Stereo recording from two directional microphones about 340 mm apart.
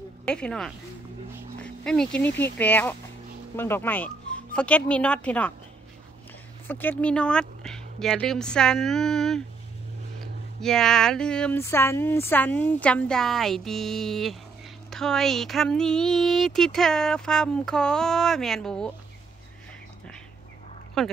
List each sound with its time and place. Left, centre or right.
0.2 s speech: centre
6.7 s speech: centre
10.6 s speech: centre
21.0 s speech: centre